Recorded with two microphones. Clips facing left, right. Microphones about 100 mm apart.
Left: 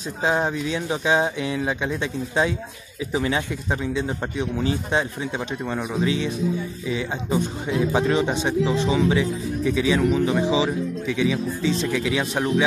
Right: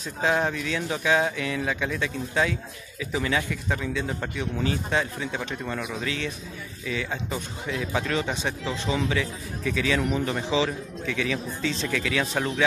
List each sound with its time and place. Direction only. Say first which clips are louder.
0.2 s a man's voice: left 2 dB; 20° left (ahead or behind)